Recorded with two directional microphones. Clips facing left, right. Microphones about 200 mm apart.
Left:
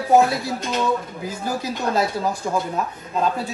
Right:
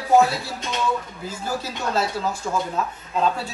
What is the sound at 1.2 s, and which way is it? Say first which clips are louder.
Speech: left 3 dB; 15° left (ahead or behind).